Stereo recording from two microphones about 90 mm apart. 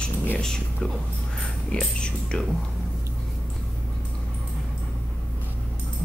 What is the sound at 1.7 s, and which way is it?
Speech, 10° left (ahead or behind).